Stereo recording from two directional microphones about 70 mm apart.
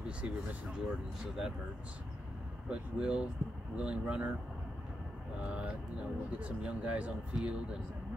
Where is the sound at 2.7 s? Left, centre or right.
Centre.